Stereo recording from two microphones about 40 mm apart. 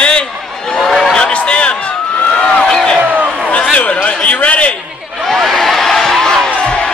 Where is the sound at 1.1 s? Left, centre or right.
Left.